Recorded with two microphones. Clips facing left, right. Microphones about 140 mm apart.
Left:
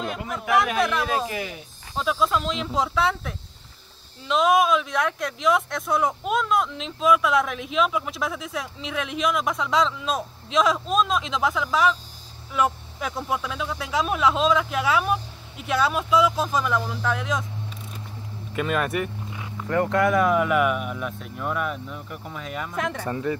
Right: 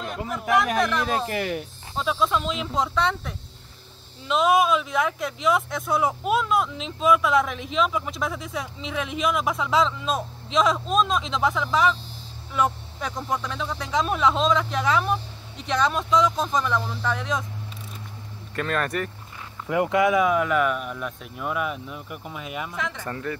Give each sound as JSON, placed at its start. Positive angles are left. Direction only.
{"t": 0.0, "sound": "a sound", "side_deg": 0}
{"t": 0.7, "sound": "speech", "side_deg": 0}
{"t": 1.3, "sound": "speech", "side_deg": -55}
{"t": 2.0, "sound": "speech", "side_deg": 5}
{"t": 18.5, "sound": "vehicle", "side_deg": 5}
{"t": 19.7, "sound": "speech", "side_deg": -10}
{"t": 23.0, "sound": "speech", "side_deg": 15}